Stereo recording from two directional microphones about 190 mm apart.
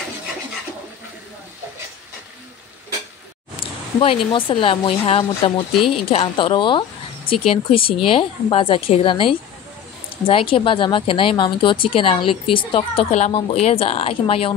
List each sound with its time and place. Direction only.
3.5 s a woman's voice: 30° left (ahead or behind)